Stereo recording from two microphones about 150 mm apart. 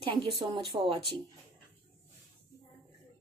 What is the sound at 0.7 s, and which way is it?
Speech, 35° right (ahead or behind).